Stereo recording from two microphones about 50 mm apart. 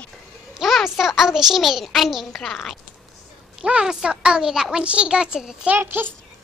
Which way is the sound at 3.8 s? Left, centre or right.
Centre.